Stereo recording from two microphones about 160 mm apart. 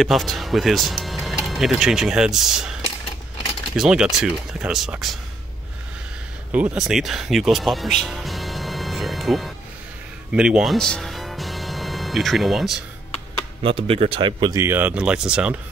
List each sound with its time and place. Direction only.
0.0 s speech: centre (ahead or behind)
6.5 s speech: 10° right (ahead or behind)
10.3 s music: 5° right (ahead or behind)
13.6 s a man's voice: 35° right (ahead or behind)
14.6 s speech: 15° right (ahead or behind)